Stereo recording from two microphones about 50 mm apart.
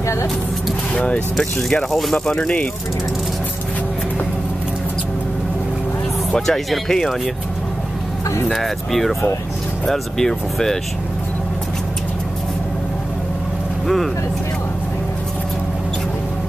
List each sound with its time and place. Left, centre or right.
0.0 s speech: left
0.9 s speech: left
1.3 s speech: centre
2.1 s speech: centre
6.3 s speech: centre
8.5 s speech: centre